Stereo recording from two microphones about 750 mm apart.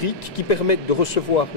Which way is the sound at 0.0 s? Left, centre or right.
Left.